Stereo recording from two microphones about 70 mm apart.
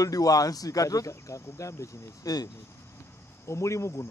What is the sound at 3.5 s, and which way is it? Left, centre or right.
Speech, left.